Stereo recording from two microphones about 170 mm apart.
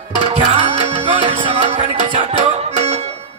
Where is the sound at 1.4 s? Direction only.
30° right (ahead or behind).